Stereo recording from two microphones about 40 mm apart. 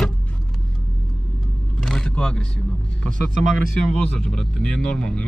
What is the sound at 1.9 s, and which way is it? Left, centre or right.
Vehicle, centre.